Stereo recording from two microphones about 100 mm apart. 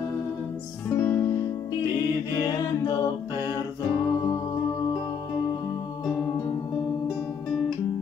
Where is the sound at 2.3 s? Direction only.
30° left (ahead or behind).